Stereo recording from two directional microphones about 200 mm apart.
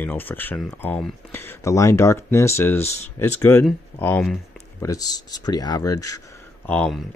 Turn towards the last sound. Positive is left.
turn(degrees=5)  # may be behind; listen again after turning